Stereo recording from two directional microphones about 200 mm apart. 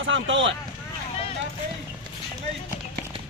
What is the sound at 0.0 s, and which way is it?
Speech, 70° right (ahead or behind).